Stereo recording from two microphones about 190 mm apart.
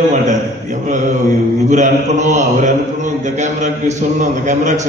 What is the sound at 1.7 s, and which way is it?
A man's voice, 40° right (ahead or behind).